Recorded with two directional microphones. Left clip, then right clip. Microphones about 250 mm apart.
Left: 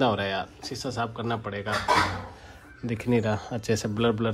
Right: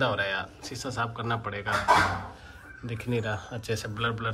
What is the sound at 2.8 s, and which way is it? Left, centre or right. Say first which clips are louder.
Speech: left 5 dB; left.